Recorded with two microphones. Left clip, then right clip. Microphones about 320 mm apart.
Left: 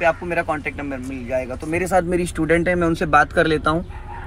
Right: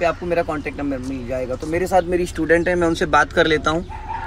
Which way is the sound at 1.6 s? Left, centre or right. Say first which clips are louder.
Right 1 dB; centre.